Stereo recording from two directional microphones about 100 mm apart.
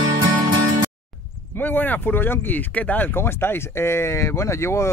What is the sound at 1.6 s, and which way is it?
Speech, 20° left (ahead or behind).